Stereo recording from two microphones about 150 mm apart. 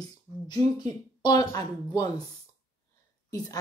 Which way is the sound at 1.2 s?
25° left (ahead or behind).